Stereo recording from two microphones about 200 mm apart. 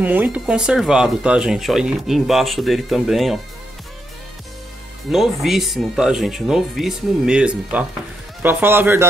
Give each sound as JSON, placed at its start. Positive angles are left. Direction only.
{"t": 0.0, "sound": "speech", "side_deg": -10}
{"t": 5.1, "sound": "speech", "side_deg": 0}